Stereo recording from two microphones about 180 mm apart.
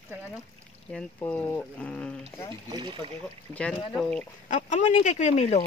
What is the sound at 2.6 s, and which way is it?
Speech, 25° right (ahead or behind).